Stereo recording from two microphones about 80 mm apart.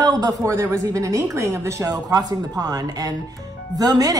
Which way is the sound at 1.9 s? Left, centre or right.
Right.